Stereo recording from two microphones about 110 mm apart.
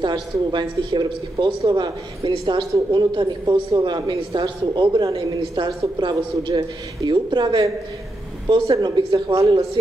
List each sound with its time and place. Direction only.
0.0 s speech: 45° right (ahead or behind)
8.7 s speech: 40° right (ahead or behind)